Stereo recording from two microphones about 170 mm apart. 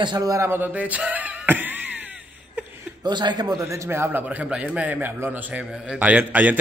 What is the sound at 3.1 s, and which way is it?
A man's voice, 25° right (ahead or behind).